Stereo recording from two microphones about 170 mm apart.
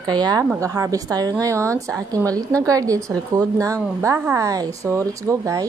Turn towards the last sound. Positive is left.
turn(degrees=-20)  # may be behind; listen again after turning